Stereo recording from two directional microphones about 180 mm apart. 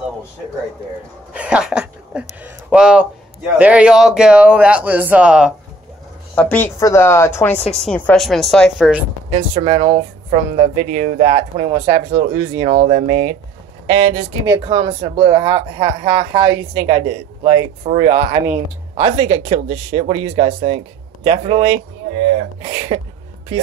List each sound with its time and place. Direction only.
1.3 s speech: 5° right (ahead or behind)
6.3 s a woman's voice: 10° left (ahead or behind)
9.6 s speech: 30° right (ahead or behind)
14.4 s speech: 20° right (ahead or behind)